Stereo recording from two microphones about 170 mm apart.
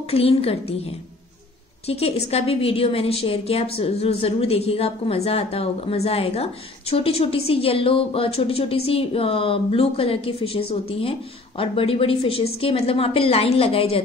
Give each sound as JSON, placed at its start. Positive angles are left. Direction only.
{"t": 0.1, "sound": "a woman's voice", "side_deg": 35}